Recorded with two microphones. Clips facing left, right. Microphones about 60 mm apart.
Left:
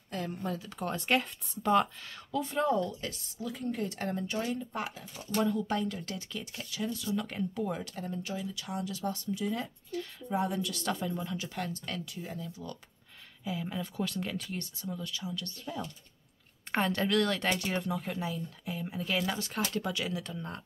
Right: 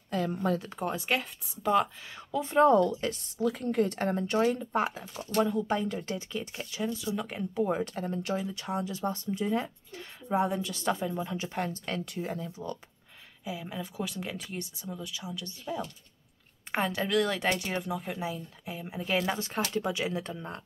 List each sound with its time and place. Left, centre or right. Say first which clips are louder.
0.8 s speech: left 2 dB; centre
2.0 s speech: right 2 dB; centre
2.6 s speech: right 9 dB; right
3.0 s speech: right 9 dB; right; by 7.6 s centre
7.6 s speech: right 6 dB; right
7.9 s speech: right 5 dB; right
12.0 s speech: right 6 dB; right
12.4 s speech: right 4 dB; right
13.4 s speech: left 1 dB; centre